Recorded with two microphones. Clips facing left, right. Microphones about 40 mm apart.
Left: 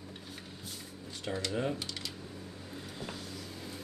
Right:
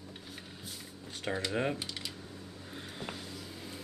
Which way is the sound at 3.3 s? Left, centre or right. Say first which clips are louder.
Left 1 dB; centre.